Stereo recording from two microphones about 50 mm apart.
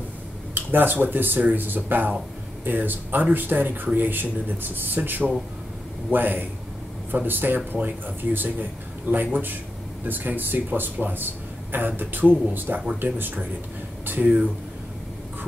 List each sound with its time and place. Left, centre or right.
0.6 s a man's voice: right